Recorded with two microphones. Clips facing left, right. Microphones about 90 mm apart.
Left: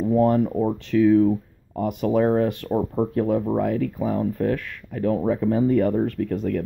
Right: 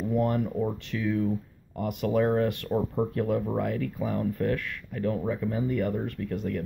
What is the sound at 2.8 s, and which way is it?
Speech, 15° left (ahead or behind).